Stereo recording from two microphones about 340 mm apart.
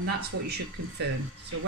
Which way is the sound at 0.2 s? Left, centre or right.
Right.